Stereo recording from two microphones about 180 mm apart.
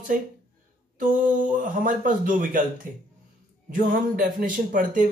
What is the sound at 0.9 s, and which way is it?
Speech, 45° right (ahead or behind).